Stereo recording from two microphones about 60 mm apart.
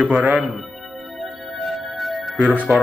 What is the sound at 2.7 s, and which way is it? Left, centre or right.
Speech, right.